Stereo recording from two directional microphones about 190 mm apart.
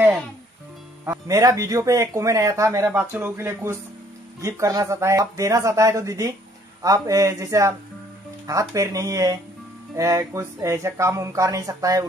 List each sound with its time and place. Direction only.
1.0 s speech: 15° right (ahead or behind)